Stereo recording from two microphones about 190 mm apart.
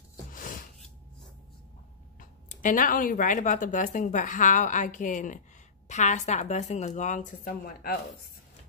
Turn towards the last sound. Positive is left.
turn(degrees=45)  # may be behind; listen again after turning